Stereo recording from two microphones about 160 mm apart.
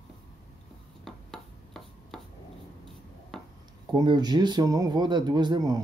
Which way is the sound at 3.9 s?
25° right (ahead or behind).